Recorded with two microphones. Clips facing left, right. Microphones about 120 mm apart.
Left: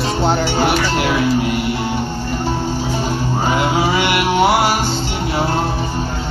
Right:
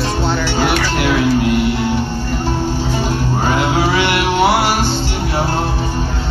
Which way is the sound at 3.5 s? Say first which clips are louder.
Right 1 dB; 10° left (ahead or behind).